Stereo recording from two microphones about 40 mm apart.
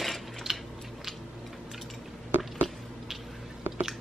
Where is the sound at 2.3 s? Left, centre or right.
Right.